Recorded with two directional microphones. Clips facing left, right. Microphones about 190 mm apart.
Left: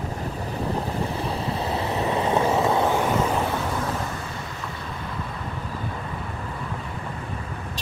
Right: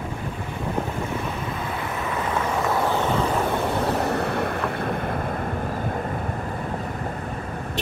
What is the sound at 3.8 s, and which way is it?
Waves, 65° right (ahead or behind).